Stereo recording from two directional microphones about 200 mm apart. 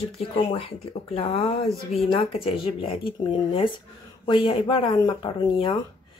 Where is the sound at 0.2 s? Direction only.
30° left (ahead or behind).